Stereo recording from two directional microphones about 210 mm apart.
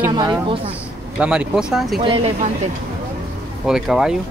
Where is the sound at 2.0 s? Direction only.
25° right (ahead or behind).